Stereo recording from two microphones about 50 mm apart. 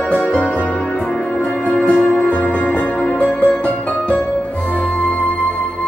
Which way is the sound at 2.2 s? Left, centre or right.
Left.